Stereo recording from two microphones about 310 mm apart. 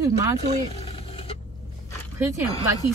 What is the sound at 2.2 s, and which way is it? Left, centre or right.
Speech, centre.